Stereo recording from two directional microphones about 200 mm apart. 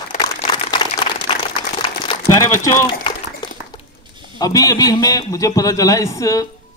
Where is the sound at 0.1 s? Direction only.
40° left (ahead or behind).